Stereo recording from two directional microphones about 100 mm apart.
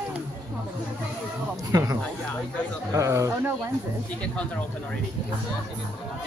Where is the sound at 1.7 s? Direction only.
35° right (ahead or behind).